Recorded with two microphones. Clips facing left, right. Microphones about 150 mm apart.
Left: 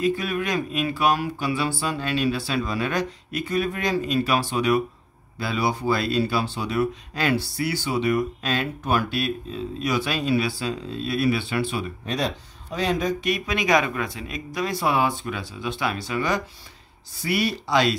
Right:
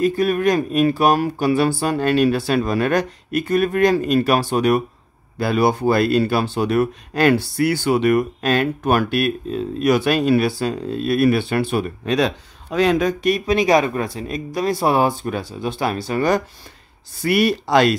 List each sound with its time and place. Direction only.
0.0 s speech: 45° right (ahead or behind)
11.7 s speech: 65° right (ahead or behind)
13.2 s speech: 35° right (ahead or behind); by 17.9 s 55° right (ahead or behind)